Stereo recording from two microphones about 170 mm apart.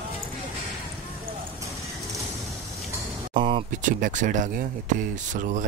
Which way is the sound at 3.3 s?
30° right (ahead or behind).